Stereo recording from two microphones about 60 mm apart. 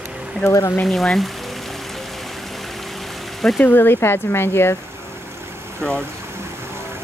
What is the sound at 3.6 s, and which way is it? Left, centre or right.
Speech, left.